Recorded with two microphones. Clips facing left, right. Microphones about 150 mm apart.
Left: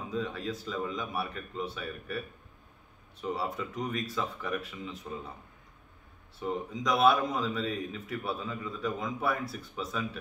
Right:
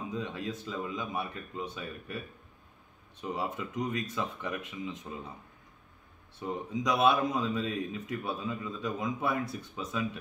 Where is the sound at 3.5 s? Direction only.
20° right (ahead or behind).